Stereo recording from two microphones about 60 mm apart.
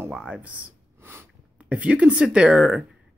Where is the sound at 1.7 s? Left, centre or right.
Right.